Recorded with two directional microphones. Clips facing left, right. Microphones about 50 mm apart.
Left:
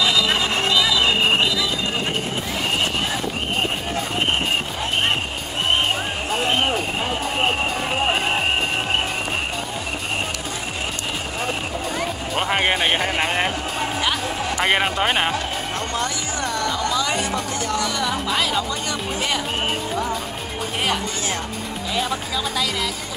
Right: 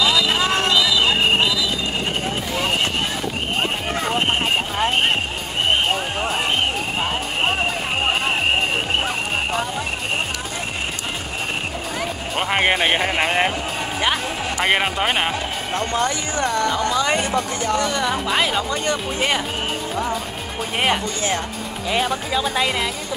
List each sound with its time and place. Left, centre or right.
12.0 s music: centre
15.9 s music: right
17.6 s speech: right
20.8 s speech: right